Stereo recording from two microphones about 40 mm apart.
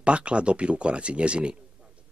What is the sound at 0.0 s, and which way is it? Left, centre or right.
Speech, right.